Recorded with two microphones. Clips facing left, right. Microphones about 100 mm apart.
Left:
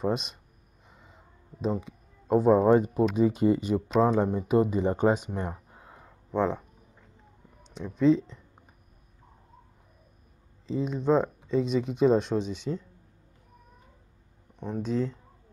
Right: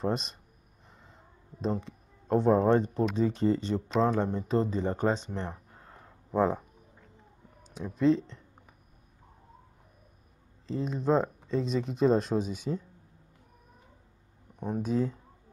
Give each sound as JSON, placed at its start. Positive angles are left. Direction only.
{"t": 0.0, "sound": "speech", "side_deg": 0}
{"t": 5.0, "sound": "a sound", "side_deg": 10}
{"t": 6.3, "sound": "speech", "side_deg": -5}
{"t": 7.6, "sound": "speech", "side_deg": -5}
{"t": 10.7, "sound": "speech", "side_deg": 0}
{"t": 14.6, "sound": "speech", "side_deg": -10}